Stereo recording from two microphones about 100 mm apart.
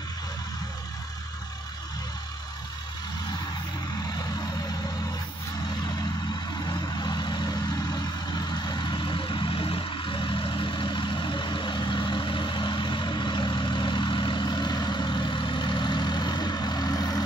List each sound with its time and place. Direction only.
6.6 s vehicle: 45° left (ahead or behind)